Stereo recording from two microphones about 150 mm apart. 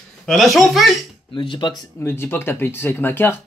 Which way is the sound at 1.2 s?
35° left (ahead or behind).